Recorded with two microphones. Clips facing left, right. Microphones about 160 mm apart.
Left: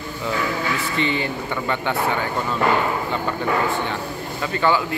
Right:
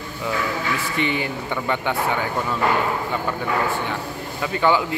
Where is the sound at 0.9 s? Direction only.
15° right (ahead or behind).